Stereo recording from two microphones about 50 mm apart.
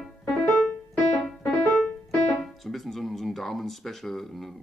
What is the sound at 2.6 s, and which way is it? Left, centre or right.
Speech, centre.